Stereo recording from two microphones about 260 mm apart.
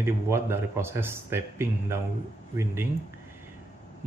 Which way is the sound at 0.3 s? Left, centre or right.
Centre.